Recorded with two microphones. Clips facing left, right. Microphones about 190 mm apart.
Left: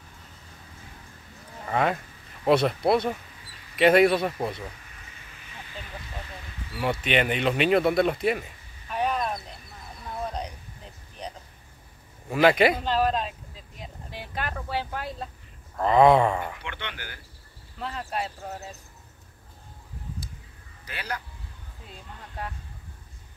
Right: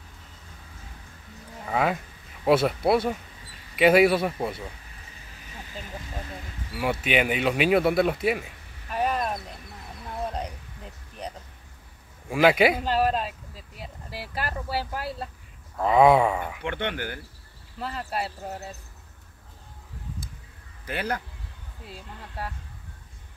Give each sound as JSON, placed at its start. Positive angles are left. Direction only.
{"t": 1.7, "sound": "speech", "side_deg": -5}
{"t": 6.8, "sound": "speech", "side_deg": -5}
{"t": 8.9, "sound": "a sound", "side_deg": -5}
{"t": 12.3, "sound": "speech", "side_deg": -5}
{"t": 13.7, "sound": "a sound", "side_deg": -5}
{"t": 15.8, "sound": "speech", "side_deg": -5}
{"t": 16.6, "sound": "frog", "side_deg": -50}
{"t": 17.7, "sound": "speech", "side_deg": -5}
{"t": 20.8, "sound": "frog", "side_deg": -50}